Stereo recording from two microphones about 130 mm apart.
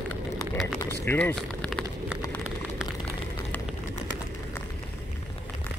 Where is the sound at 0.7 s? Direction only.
15° left (ahead or behind).